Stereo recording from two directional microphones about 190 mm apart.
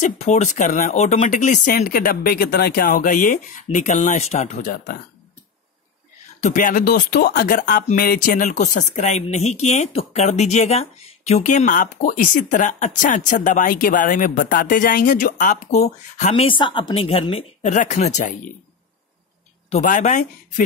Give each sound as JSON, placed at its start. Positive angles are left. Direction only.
{"t": 0.0, "sound": "speech", "side_deg": 35}
{"t": 6.4, "sound": "speech", "side_deg": 45}
{"t": 19.7, "sound": "speech", "side_deg": 40}